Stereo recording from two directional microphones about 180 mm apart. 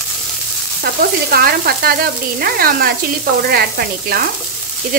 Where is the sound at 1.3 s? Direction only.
60° right (ahead or behind).